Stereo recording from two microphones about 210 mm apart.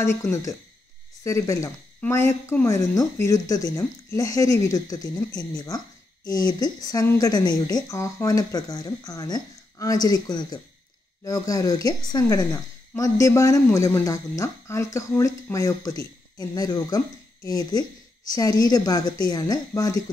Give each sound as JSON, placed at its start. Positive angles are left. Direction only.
{"t": 0.0, "sound": "speech", "side_deg": 10}